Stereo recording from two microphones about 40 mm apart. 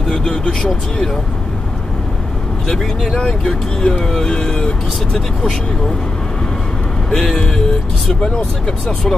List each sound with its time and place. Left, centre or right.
0.0 s speech: centre
2.7 s speech: centre
7.1 s speech: centre